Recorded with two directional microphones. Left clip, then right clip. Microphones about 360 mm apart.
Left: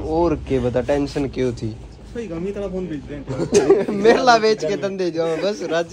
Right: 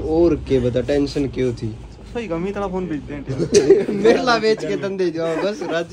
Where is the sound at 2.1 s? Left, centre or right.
Right.